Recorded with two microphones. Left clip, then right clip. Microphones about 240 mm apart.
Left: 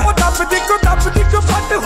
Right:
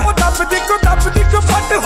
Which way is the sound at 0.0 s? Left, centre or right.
Centre.